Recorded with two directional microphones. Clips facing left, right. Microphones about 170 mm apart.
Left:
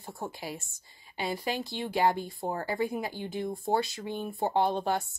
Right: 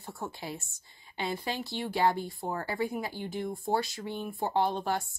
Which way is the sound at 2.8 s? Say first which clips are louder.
Left 1 dB; 20° left (ahead or behind).